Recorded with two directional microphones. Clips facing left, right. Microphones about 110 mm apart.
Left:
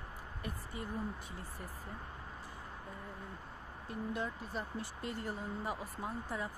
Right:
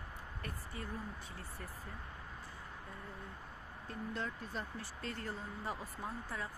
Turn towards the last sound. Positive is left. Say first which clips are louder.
# left 3 dB
turn(degrees=15)  # may be behind; listen again after turning